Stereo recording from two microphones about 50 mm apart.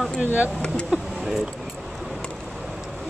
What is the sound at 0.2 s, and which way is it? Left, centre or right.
Speech, right.